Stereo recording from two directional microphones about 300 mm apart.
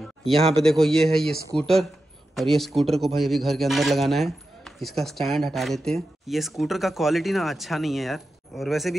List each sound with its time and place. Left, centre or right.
0.4 s speech: centre
0.7 s a man's voice: centre